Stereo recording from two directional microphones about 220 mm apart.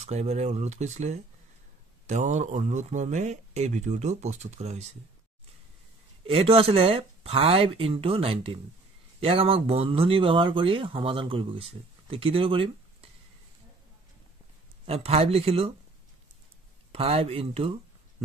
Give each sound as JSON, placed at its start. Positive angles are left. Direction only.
{"t": 0.0, "sound": "speech", "side_deg": -30}
{"t": 6.2, "sound": "speech", "side_deg": -25}
{"t": 14.9, "sound": "speech", "side_deg": -25}
{"t": 16.9, "sound": "speech", "side_deg": -25}